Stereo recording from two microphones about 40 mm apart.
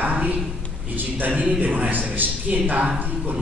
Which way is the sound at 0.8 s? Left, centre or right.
Right.